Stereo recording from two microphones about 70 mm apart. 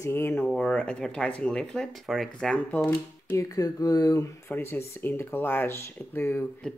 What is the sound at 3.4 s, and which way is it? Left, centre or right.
Speech, left.